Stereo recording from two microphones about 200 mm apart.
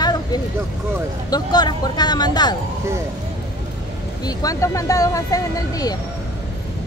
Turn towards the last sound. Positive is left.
turn(degrees=20)  # may be behind; listen again after turning